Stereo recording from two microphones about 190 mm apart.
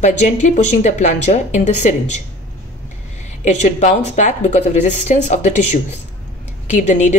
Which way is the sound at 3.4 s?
40° left (ahead or behind).